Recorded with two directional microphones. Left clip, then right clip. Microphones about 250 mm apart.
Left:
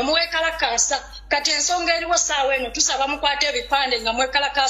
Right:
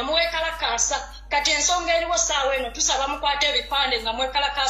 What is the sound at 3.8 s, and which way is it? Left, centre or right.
Speech, left.